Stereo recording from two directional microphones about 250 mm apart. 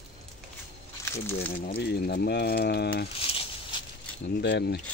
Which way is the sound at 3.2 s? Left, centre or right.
Left.